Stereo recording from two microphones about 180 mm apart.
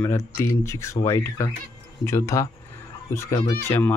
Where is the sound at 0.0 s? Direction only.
15° left (ahead or behind).